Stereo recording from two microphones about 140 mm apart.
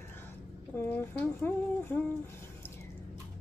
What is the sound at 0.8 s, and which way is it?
A woman's voice, 15° left (ahead or behind).